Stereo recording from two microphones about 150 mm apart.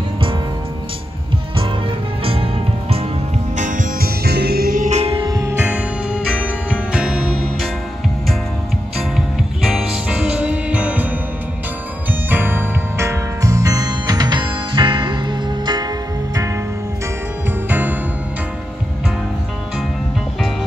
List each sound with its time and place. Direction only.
2.2 s music: 40° right (ahead or behind)
3.5 s music: 60° right (ahead or behind)
5.2 s music: 25° right (ahead or behind)
5.7 s music: 5° right (ahead or behind)
9.7 s music: 5° right (ahead or behind)
12.3 s music: 15° right (ahead or behind); by 15.9 s 30° right (ahead or behind)
17.6 s music: 10° right (ahead or behind)